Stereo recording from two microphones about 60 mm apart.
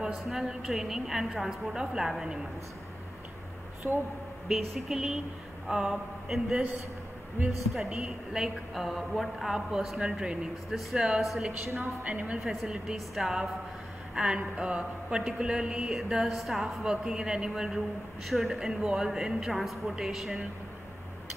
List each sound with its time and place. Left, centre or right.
0.0 s a woman's voice: centre
3.8 s speech: right
4.5 s a woman's voice: centre
7.8 s a woman's voice: centre
11.8 s a woman's voice: right
12.6 s a woman's voice: centre